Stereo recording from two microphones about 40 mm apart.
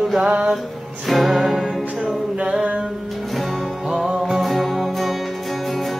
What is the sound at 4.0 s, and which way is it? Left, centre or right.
Music, centre.